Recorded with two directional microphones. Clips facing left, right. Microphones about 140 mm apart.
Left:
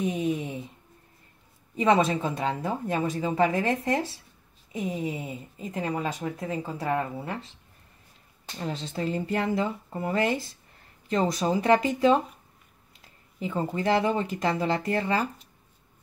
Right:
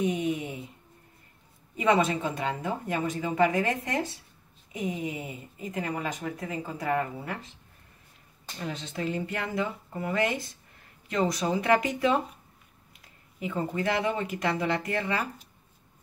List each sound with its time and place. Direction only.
0.0 s a sound: 25° left (ahead or behind)
1.8 s speech: 30° left (ahead or behind)
5.0 s speech: 25° left (ahead or behind)
8.5 s speech: 30° left (ahead or behind)
13.4 s speech: 25° left (ahead or behind)